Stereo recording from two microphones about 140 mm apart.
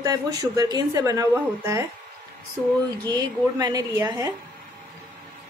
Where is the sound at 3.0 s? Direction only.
25° right (ahead or behind).